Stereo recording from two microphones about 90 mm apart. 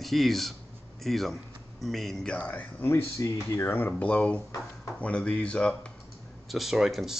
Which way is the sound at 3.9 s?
15° left (ahead or behind).